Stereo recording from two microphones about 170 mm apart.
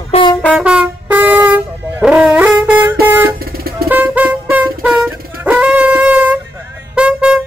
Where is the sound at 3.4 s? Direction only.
60° right (ahead or behind).